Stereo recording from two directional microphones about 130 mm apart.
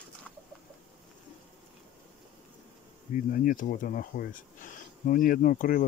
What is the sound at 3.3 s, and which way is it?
Speech, 90° left.